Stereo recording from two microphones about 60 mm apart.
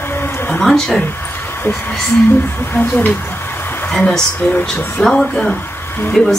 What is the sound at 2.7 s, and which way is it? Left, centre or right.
Speech, left.